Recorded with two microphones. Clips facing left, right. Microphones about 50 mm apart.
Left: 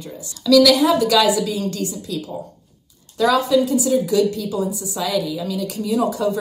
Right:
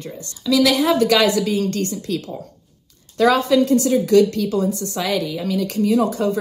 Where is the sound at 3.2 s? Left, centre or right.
Right.